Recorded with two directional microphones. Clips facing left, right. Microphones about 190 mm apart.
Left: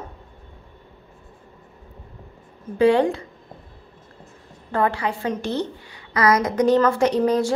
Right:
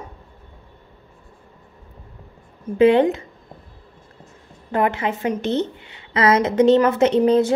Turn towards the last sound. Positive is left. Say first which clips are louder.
# right 3 dB
turn(degrees=-25)  # may be behind; listen again after turning